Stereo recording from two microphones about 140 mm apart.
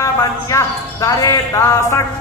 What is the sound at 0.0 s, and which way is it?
Speech, 20° left (ahead or behind).